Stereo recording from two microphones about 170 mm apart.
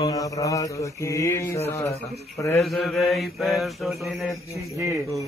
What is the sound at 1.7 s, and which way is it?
Speech, 15° left (ahead or behind).